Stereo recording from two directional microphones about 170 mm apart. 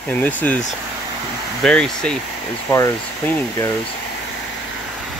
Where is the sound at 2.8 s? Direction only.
15° left (ahead or behind).